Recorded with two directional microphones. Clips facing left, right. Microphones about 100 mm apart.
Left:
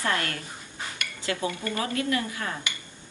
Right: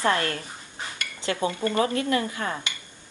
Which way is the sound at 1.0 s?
30° right (ahead or behind).